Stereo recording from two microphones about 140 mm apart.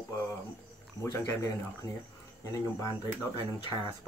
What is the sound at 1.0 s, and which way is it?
Speech, 20° left (ahead or behind).